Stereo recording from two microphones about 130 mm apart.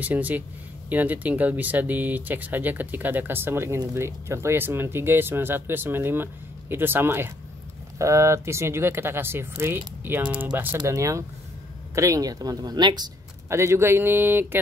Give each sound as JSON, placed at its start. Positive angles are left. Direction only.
{"t": 0.0, "sound": "speech", "side_deg": -10}
{"t": 10.8, "sound": "speech", "side_deg": -25}
{"t": 13.5, "sound": "speech", "side_deg": -20}